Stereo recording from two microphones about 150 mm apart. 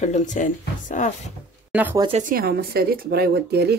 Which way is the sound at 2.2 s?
75° right (ahead or behind).